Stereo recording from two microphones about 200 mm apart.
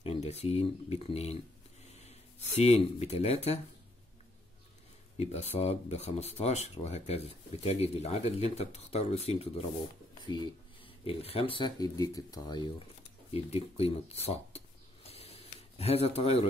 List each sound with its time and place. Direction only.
0.0 s speech: 30° left (ahead or behind)
1.9 s snort: 35° left (ahead or behind)
2.5 s speech: 30° left (ahead or behind)
5.1 s speech: 30° left (ahead or behind)
15.0 s a sound: 30° left (ahead or behind)